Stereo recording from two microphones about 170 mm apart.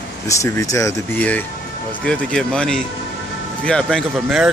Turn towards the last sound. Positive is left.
turn(degrees=-5)  # may be behind; listen again after turning